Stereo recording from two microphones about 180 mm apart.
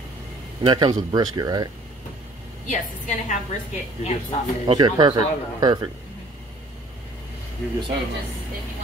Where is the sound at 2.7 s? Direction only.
45° left (ahead or behind).